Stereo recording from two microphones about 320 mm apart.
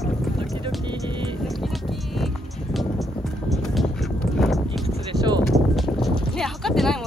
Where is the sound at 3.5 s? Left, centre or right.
Centre.